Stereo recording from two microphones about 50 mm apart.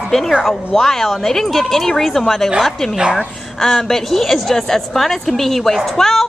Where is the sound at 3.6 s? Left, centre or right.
Centre.